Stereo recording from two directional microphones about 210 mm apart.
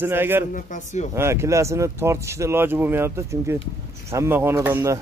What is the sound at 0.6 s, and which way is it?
Speech, 35° left (ahead or behind).